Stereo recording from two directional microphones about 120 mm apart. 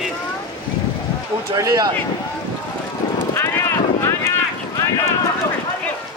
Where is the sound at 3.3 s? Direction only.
20° left (ahead or behind).